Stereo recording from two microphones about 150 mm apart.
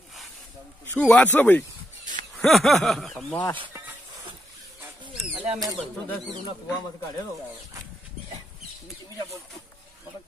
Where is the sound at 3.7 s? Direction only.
15° right (ahead or behind).